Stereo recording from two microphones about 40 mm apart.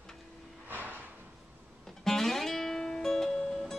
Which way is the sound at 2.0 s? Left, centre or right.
Centre.